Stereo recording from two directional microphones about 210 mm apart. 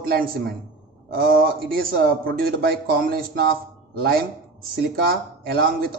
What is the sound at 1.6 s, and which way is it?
A man's voice, 45° right (ahead or behind).